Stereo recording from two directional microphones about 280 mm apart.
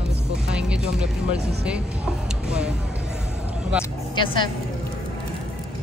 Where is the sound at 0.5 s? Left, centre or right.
Centre.